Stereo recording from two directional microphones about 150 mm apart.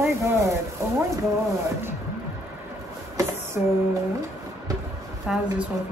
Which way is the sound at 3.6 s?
10° right (ahead or behind).